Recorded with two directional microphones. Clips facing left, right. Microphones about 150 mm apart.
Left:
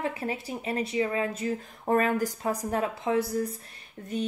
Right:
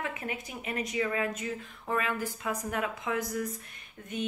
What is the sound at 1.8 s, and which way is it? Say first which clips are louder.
Speech: left 7 dB; 45° left (ahead or behind).